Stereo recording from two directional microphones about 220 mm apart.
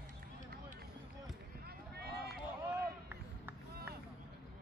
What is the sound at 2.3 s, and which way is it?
Run, 10° right (ahead or behind).